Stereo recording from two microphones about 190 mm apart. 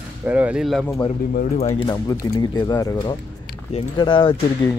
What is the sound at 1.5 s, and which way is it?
Speech, 35° left (ahead or behind).